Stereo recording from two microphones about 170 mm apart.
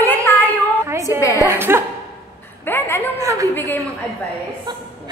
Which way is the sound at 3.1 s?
20° right (ahead or behind).